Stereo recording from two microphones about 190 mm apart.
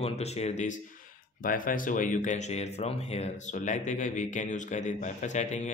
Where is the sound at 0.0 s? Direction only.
35° left (ahead or behind).